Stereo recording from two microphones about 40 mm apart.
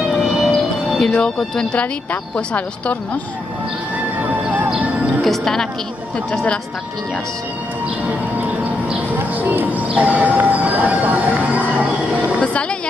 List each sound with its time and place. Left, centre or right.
0.1 s music: centre
0.5 s music: centre
2.3 s speech: left
4.2 s music: right
5.4 s a woman's voice: centre
9.3 s speech: right
12.4 s a woman's voice: left